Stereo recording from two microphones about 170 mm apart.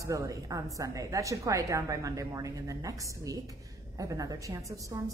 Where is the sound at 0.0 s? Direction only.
20° right (ahead or behind).